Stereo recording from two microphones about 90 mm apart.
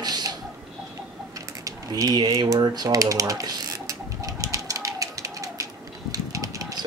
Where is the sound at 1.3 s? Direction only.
40° right (ahead or behind).